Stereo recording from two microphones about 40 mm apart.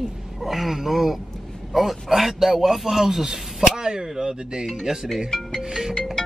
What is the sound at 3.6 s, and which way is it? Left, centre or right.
Speech, centre.